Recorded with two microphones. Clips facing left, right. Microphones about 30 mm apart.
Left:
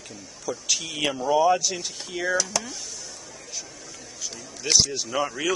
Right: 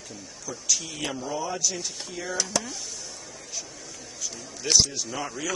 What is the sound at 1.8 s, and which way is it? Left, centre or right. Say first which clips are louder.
Speech: left 4 dB; left.